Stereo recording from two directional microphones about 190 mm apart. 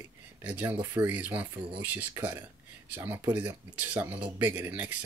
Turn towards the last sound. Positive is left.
turn(degrees=-10)  # may be behind; listen again after turning